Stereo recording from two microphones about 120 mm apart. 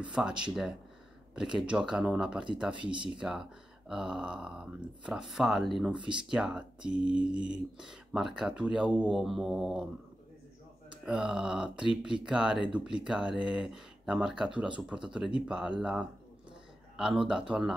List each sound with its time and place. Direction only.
0.1 s speech: 10° right (ahead or behind)
2.7 s speech: 45° right (ahead or behind)
3.2 s speech: 5° right (ahead or behind)
5.9 s speech: 40° right (ahead or behind)
6.2 s speech: 5° right (ahead or behind)
11.1 s speech: 5° right (ahead or behind)